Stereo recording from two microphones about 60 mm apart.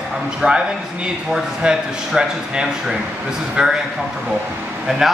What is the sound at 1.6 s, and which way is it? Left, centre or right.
Speech, centre.